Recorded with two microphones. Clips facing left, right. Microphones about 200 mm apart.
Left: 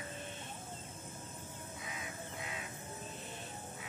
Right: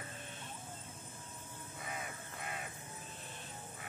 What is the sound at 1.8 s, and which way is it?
Crow, 55° right (ahead or behind).